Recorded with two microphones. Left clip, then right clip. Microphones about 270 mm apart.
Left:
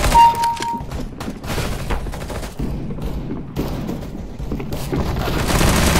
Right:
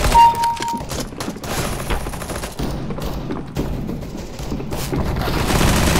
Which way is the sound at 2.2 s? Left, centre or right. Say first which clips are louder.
Right 2 dB; right.